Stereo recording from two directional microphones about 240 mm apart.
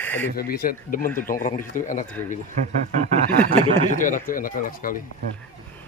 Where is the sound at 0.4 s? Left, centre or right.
Left.